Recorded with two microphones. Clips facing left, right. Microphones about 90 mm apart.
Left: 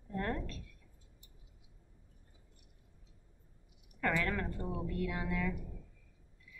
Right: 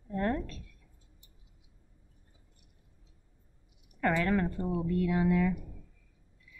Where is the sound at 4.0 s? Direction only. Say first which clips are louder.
Right 6 dB; 30° right (ahead or behind).